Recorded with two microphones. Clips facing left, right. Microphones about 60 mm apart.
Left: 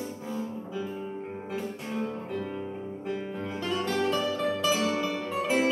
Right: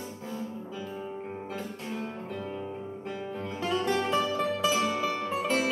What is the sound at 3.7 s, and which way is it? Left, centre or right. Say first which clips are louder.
Music: right 1 dB; centre.